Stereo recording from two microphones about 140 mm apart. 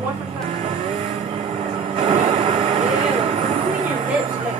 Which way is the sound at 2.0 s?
60° right (ahead or behind).